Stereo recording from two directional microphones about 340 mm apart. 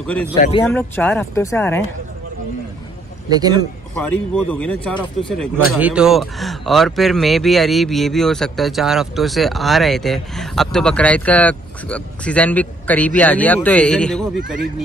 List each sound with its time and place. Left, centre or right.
0.0 s a man's voice: centre
0.4 s speech: centre
0.7 s a man's voice: centre
3.3 s a man's voice: centre
3.9 s a man's voice: centre